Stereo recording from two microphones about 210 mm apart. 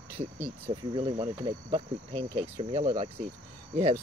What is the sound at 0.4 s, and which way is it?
Speech, 25° right (ahead or behind).